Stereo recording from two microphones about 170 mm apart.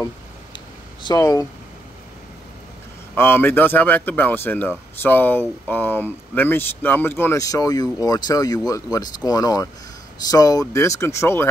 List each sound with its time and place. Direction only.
1.0 s speech: 20° left (ahead or behind)
3.2 s speech: 15° left (ahead or behind)